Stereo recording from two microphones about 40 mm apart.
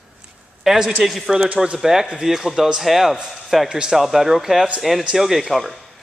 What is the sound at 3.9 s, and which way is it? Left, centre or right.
Speech, centre.